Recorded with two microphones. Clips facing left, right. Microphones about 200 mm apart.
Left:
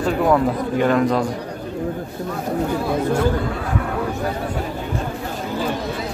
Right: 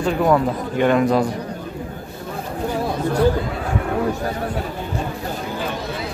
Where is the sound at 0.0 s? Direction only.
Centre (ahead or behind).